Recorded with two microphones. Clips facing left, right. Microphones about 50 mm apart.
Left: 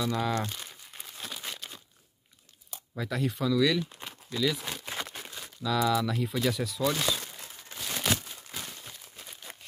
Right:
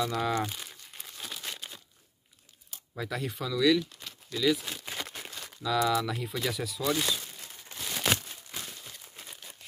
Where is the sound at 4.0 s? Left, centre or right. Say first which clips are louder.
Left 3 dB; left.